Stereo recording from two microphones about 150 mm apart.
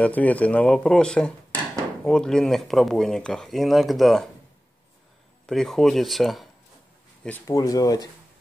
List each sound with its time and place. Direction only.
0.0 s speech: 10° left (ahead or behind)
5.5 s speech: 5° left (ahead or behind)
7.2 s speech: 10° left (ahead or behind)
7.5 s speech: 25° left (ahead or behind)